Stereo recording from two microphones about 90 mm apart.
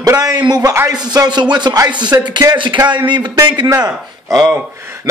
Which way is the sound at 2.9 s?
60° right (ahead or behind).